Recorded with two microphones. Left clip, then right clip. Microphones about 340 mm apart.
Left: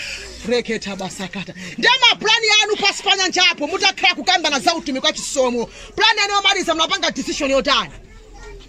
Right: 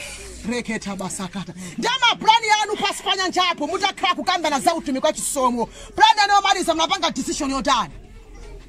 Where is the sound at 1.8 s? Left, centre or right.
Centre.